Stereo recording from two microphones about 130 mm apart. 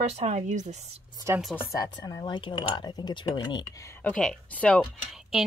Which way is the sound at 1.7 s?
30° left (ahead or behind).